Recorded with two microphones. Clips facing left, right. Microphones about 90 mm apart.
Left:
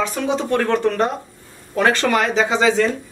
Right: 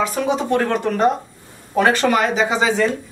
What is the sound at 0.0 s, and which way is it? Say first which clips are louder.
Speech: right 1 dB; 10° right (ahead or behind).